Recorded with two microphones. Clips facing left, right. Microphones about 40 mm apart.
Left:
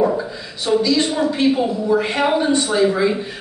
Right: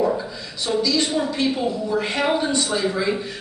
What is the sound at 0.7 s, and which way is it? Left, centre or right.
A woman's voice, centre.